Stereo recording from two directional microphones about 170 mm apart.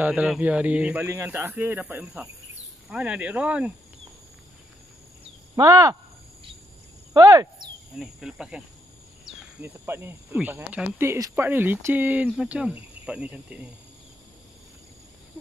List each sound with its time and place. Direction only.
0.0 s speech: 10° right (ahead or behind)
5.6 s speech: 20° right (ahead or behind)
7.2 s speech: 20° right (ahead or behind)
8.0 s cricket: 5° right (ahead or behind)
9.2 s speech: 10° right (ahead or behind)